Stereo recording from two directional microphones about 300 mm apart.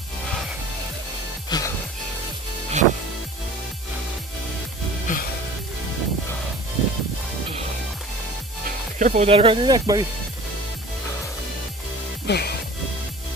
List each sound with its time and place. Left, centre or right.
1.5 s music: centre
2.8 s music: right
5.1 s music: left
8.6 s speech: right
12.3 s music: left